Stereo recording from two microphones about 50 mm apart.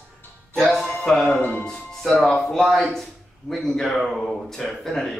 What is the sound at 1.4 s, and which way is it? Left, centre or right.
Speech, left.